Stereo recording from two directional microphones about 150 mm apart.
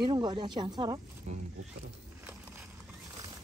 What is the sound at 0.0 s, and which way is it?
A woman's voice, 30° right (ahead or behind).